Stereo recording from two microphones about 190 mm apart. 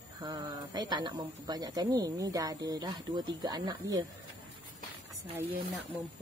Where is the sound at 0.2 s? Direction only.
20° right (ahead or behind).